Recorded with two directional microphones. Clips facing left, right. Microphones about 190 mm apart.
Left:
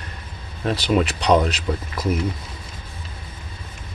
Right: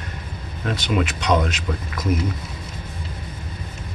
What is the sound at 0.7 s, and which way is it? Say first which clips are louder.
Speech: left 3 dB; 35° left (ahead or behind).